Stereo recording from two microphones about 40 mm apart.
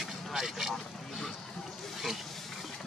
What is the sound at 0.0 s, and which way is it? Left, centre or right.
Vehicle, centre.